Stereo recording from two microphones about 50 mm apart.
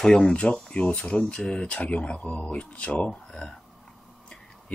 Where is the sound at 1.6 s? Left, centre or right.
Left.